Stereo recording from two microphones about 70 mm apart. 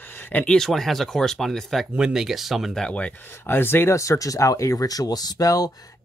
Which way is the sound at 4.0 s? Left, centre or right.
Left.